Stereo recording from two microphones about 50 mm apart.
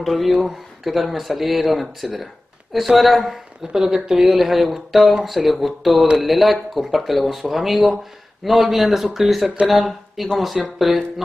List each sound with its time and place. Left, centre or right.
0.0 s a woman's voice: centre